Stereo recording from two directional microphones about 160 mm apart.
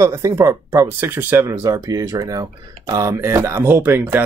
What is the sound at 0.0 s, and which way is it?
Speech, 20° right (ahead or behind).